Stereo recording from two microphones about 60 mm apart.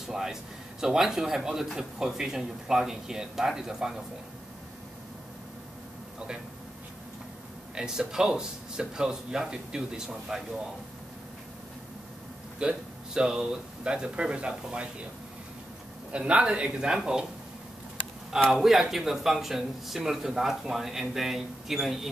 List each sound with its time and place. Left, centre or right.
0.0 s a man's voice: centre
6.1 s a sound: centre
7.7 s a man's voice: centre
12.5 s a man's voice: centre
16.1 s a man's voice: centre
18.5 s speech: centre